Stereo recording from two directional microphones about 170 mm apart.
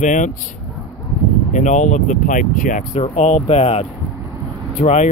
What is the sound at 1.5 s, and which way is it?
Speech, 45° left (ahead or behind).